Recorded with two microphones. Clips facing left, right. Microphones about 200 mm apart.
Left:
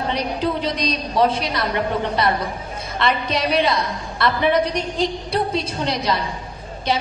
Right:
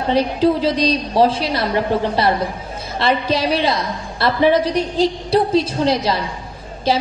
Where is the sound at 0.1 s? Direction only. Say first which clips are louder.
Right 10 dB; 30° right (ahead or behind).